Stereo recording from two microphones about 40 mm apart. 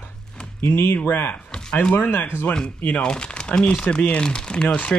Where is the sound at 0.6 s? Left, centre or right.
Left.